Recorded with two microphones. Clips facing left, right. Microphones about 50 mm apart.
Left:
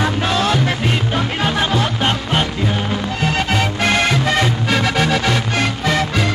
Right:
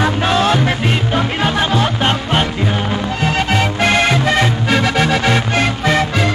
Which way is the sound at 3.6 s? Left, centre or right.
Right.